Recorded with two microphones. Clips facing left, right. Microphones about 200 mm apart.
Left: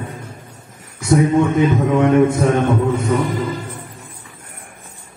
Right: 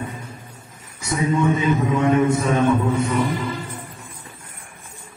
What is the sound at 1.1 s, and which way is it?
Mantra, 55° left (ahead or behind).